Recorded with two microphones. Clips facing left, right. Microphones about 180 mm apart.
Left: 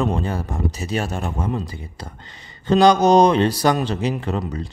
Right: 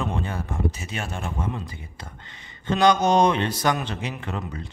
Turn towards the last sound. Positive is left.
turn(degrees=35)  # may be behind; listen again after turning